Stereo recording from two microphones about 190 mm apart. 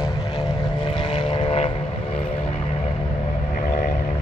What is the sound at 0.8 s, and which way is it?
Vehicle, 25° left (ahead or behind).